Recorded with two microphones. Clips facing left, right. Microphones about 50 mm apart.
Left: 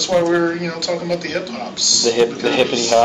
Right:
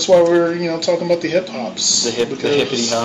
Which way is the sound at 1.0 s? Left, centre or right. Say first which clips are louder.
Right 5 dB; right.